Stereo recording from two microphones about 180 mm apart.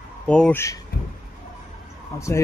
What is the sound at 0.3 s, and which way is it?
Speech, 10° left (ahead or behind).